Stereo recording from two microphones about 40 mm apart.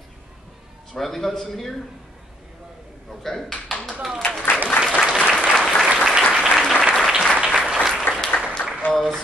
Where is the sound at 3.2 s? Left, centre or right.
Centre.